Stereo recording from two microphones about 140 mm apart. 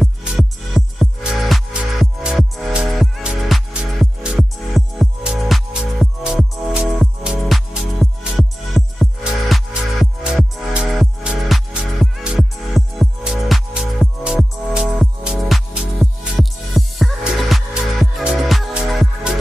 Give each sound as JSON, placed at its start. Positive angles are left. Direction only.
{"t": 0.0, "sound": "music", "side_deg": 0}